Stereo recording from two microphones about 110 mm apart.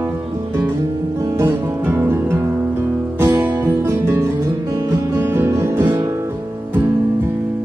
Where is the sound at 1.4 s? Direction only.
20° right (ahead or behind).